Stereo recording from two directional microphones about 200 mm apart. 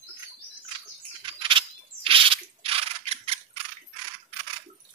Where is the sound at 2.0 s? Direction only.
25° right (ahead or behind).